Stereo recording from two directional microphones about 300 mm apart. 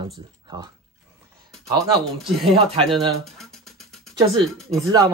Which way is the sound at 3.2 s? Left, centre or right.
Centre.